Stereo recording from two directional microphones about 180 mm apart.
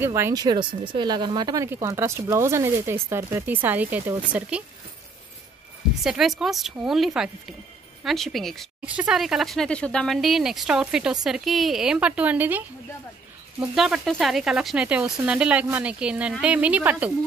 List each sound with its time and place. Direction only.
0.0 s speech: 15° right (ahead or behind)
6.0 s speech: centre (ahead or behind)